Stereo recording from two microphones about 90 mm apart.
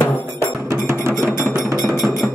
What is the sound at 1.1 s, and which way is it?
Music, 30° left (ahead or behind).